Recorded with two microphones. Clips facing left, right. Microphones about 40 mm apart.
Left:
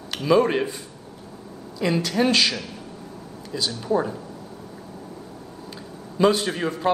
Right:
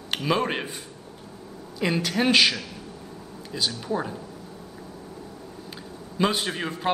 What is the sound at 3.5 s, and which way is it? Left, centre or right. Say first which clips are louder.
Speech: left 4 dB; centre.